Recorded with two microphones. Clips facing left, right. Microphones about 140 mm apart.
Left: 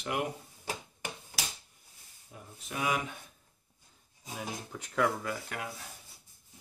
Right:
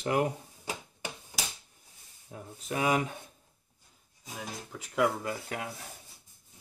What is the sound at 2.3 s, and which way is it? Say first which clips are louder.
Speech: right 7 dB; 45° right (ahead or behind).